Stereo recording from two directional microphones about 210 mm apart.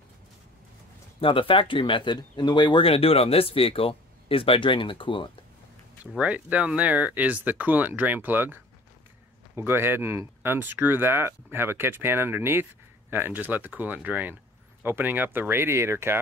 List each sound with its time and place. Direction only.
1.2 s speech: 25° left (ahead or behind)
6.1 s speech: 5° right (ahead or behind)
9.6 s speech: 10° right (ahead or behind)